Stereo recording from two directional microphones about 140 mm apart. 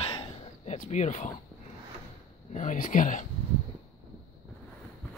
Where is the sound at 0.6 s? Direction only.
55° left (ahead or behind).